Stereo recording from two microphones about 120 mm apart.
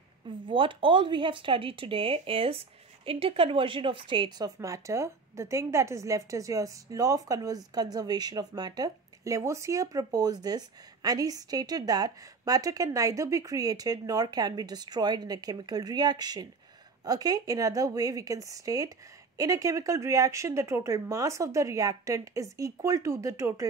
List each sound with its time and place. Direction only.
0.5 s speech: 45° right (ahead or behind)
4.6 s a woman's voice: 25° right (ahead or behind)